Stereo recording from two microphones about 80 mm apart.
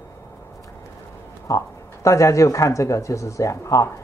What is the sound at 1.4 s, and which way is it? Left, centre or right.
Speech, left.